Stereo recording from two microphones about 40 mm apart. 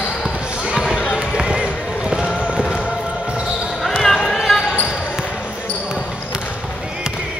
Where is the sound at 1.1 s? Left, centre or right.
Right.